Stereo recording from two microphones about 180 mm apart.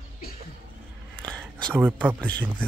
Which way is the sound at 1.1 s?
5° left (ahead or behind).